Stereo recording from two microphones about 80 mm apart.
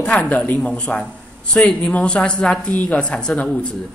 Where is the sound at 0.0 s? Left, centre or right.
Centre.